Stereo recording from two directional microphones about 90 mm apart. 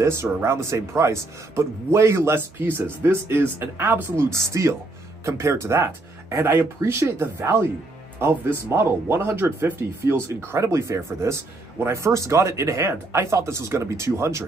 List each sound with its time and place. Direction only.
0.0 s a man's voice: 30° right (ahead or behind)